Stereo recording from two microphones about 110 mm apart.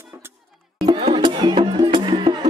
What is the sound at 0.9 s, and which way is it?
Music, 50° right (ahead or behind).